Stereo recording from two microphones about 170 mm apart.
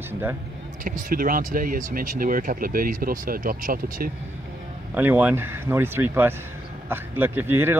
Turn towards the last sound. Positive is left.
turn(degrees=-15)  # may be behind; listen again after turning